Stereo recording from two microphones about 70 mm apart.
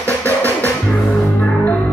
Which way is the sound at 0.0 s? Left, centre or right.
Left.